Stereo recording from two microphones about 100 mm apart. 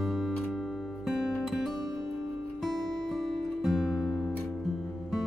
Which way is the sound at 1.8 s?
40° right (ahead or behind).